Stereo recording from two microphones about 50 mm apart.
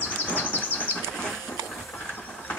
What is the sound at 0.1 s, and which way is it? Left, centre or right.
Train, left.